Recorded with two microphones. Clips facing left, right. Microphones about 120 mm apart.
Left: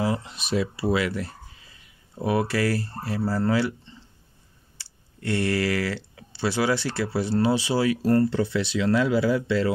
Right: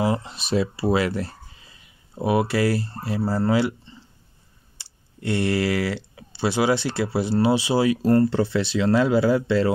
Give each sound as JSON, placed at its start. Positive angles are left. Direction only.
{"t": 0.0, "sound": "speech", "side_deg": -30}
{"t": 2.1, "sound": "speech", "side_deg": -15}
{"t": 4.7, "sound": "speech", "side_deg": -20}
{"t": 8.3, "sound": "speech", "side_deg": -35}